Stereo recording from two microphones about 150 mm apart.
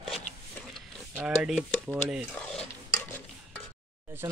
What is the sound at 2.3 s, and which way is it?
Dishes, 10° left (ahead or behind).